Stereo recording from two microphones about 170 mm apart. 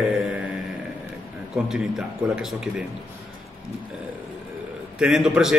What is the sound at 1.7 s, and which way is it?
A man's voice, 5° right (ahead or behind).